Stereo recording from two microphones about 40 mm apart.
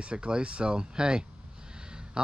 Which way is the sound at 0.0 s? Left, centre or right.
Right.